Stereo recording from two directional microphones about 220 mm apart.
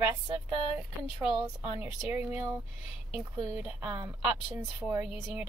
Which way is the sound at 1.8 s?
10° right (ahead or behind).